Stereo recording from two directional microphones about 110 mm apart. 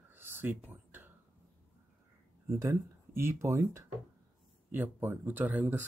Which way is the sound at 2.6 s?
25° right (ahead or behind).